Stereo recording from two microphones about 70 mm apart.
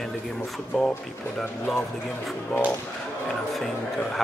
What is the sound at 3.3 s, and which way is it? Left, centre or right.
Speech, centre.